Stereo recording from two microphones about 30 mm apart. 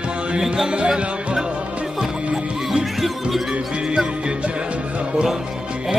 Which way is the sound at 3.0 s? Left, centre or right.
Centre.